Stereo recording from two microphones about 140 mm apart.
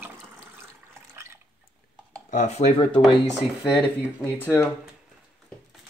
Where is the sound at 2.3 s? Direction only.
55° left (ahead or behind).